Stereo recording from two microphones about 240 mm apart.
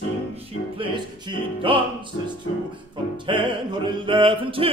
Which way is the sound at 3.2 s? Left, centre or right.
Right.